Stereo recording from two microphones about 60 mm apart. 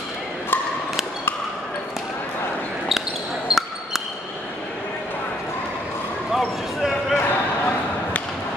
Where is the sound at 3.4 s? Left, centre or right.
Centre.